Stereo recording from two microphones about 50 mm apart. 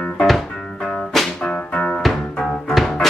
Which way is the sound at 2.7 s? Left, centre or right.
Centre.